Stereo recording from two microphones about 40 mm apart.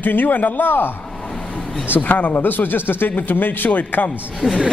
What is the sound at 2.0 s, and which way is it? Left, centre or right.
A man's voice, left.